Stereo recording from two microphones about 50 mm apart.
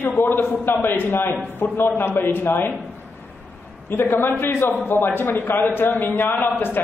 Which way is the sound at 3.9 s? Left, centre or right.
Left.